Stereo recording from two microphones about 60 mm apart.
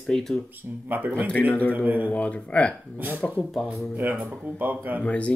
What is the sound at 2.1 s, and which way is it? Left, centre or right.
Speech, left.